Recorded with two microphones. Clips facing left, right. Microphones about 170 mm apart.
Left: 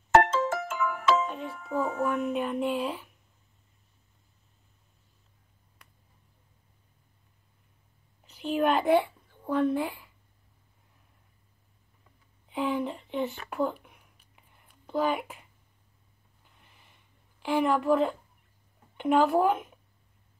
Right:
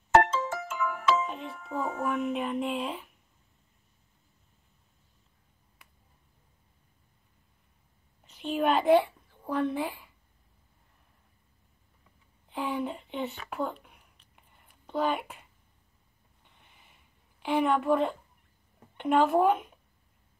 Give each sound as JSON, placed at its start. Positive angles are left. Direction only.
{"t": 0.1, "sound": "ringtone", "side_deg": 75}
{"t": 1.3, "sound": "speech", "side_deg": 0}
{"t": 8.3, "sound": "speech", "side_deg": 0}
{"t": 12.4, "sound": "speech", "side_deg": 0}
{"t": 14.3, "sound": "a sound", "side_deg": 0}
{"t": 16.4, "sound": "a sound", "side_deg": 0}
{"t": 18.9, "sound": "speech", "side_deg": 0}